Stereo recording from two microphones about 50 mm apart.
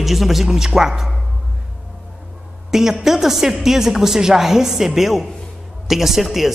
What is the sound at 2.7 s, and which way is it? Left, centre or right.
A man's voice, centre.